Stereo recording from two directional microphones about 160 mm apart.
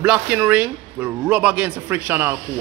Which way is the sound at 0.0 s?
10° right (ahead or behind).